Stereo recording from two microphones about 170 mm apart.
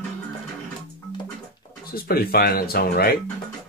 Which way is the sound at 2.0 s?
65° left (ahead or behind).